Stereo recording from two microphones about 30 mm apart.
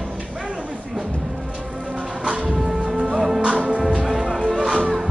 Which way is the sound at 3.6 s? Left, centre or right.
Right.